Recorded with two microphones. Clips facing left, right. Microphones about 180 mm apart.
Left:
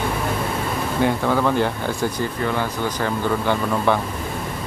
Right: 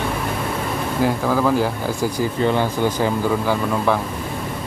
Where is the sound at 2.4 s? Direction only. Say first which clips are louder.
Right 6 dB; 25° right (ahead or behind).